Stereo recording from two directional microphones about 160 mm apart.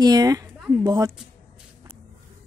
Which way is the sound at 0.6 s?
5° right (ahead or behind).